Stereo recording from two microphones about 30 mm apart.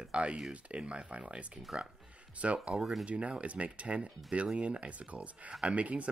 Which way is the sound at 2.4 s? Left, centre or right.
Right.